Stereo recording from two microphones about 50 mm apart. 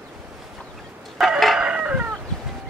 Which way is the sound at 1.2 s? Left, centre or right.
Centre.